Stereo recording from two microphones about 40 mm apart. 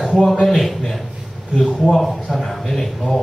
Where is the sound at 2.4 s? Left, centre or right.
Centre.